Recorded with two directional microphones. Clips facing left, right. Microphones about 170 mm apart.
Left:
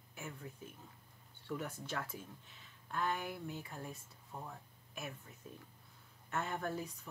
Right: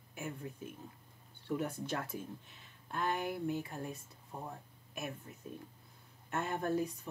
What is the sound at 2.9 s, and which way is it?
Speech, 15° right (ahead or behind).